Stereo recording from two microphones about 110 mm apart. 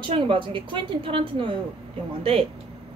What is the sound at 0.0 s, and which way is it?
A woman's voice, 50° right (ahead or behind).